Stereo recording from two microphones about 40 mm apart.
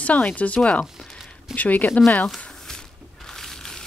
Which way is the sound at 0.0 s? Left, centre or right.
Left.